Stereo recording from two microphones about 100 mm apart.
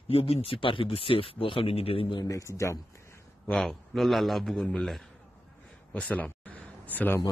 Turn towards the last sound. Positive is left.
turn(degrees=15)  # may be behind; listen again after turning